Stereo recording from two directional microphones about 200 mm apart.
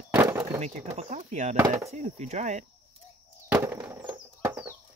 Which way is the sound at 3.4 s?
10° right (ahead or behind).